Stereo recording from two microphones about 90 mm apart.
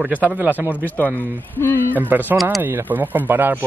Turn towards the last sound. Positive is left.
turn(degrees=-20)  # may be behind; listen again after turning